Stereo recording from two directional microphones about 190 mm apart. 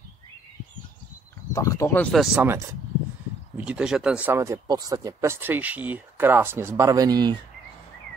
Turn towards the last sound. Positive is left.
turn(degrees=-20)  # may be behind; listen again after turning